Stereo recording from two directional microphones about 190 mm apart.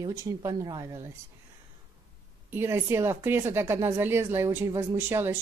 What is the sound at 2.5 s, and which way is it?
A woman's voice, 15° right (ahead or behind).